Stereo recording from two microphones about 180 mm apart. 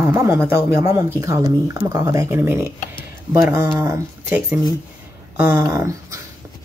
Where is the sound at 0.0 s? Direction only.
15° right (ahead or behind).